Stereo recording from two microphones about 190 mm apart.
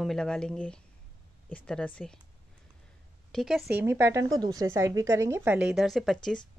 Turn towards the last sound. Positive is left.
turn(degrees=5)  # may be behind; listen again after turning